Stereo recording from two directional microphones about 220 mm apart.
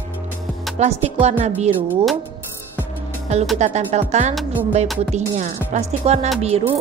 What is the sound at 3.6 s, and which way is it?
Speech, 35° right (ahead or behind).